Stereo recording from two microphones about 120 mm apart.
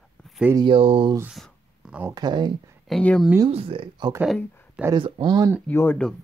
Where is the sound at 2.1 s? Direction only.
35° right (ahead or behind).